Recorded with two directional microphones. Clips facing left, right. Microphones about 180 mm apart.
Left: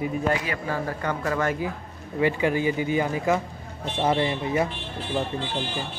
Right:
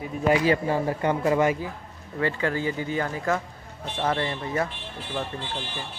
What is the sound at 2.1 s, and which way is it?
Speech, 15° left (ahead or behind).